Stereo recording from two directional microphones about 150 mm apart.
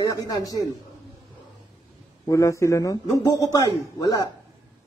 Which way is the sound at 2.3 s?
20° left (ahead or behind).